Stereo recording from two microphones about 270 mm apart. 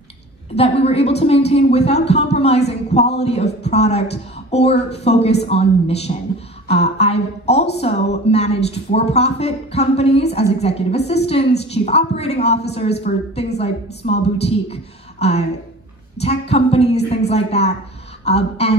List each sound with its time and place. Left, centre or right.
0.6 s a woman's voice: left